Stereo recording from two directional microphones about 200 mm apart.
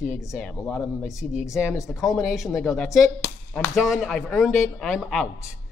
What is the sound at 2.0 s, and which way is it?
A woman's voice, centre (ahead or behind).